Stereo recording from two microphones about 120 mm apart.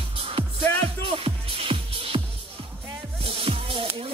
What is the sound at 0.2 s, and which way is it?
Music, 50° right (ahead or behind).